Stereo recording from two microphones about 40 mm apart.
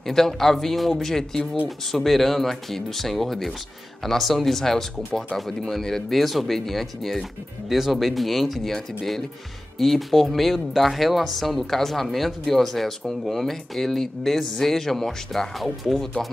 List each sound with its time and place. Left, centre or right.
0.0 s speech: centre